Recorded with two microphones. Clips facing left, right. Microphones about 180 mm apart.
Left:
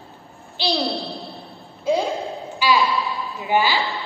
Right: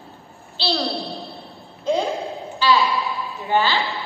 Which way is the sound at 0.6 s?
15° left (ahead or behind).